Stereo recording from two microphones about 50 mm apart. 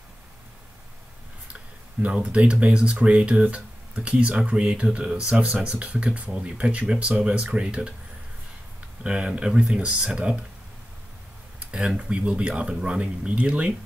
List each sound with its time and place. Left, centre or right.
1.5 s speech: right
9.0 s speech: right
12.2 s speech: right